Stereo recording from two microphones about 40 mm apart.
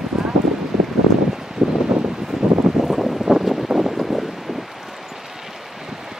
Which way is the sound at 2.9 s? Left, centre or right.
Centre.